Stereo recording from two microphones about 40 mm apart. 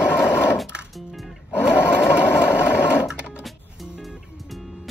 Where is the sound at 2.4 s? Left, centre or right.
Left.